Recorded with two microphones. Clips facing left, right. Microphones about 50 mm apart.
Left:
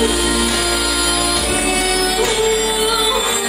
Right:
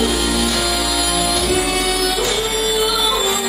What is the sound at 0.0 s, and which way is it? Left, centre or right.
Music, centre.